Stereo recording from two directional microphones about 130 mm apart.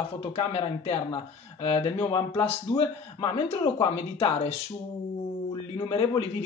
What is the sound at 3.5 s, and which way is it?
Speech, 45° left (ahead or behind).